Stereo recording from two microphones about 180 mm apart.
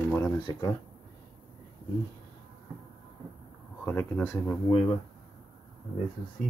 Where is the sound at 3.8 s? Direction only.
10° left (ahead or behind).